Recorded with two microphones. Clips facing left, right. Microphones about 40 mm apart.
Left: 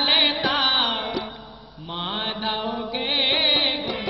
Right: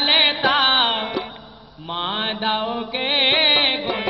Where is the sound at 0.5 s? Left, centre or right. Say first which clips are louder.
Right 5 dB; right.